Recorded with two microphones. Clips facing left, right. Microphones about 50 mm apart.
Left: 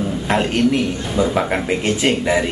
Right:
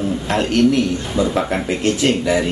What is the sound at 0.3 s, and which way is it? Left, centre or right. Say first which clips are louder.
Speech: right 1 dB; centre.